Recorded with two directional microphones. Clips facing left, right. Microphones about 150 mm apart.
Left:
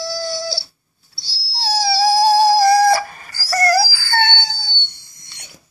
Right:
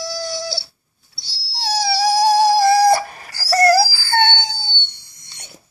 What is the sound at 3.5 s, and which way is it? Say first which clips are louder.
Dog: right 3 dB; 30° right (ahead or behind).